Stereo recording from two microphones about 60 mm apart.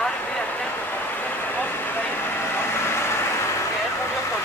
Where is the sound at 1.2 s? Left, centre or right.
Left.